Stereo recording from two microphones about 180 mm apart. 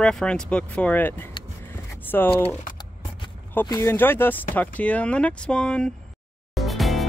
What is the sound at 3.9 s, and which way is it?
Speech, 10° left (ahead or behind).